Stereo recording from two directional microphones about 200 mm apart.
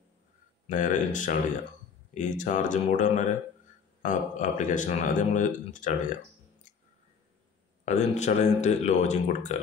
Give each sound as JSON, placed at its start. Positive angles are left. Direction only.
{"t": 0.7, "sound": "speech", "side_deg": 40}
{"t": 7.8, "sound": "speech", "side_deg": 35}